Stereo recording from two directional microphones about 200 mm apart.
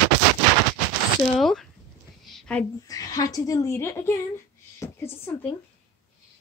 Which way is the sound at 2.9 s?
20° left (ahead or behind).